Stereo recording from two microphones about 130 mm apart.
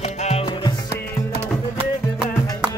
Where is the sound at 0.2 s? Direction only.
50° left (ahead or behind).